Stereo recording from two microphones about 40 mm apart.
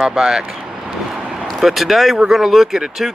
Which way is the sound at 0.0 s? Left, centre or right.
Centre.